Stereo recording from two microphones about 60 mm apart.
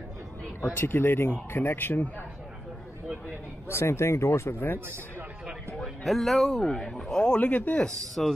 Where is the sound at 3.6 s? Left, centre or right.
Left.